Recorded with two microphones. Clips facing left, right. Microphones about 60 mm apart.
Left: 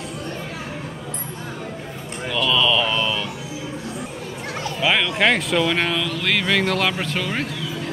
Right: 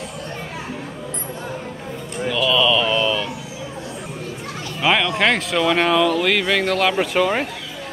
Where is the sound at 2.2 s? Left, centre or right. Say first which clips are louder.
Right 2 dB; centre.